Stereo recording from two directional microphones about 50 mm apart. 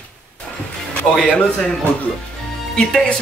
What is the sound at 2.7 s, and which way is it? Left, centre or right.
Speech, centre.